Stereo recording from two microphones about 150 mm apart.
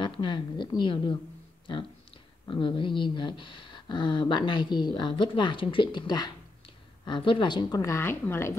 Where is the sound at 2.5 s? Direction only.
35° left (ahead or behind).